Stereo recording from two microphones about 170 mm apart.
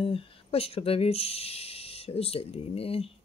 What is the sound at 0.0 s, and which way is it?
Speech, 35° left (ahead or behind).